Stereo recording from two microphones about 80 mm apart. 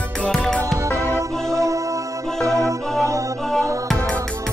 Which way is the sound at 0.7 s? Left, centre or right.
Right.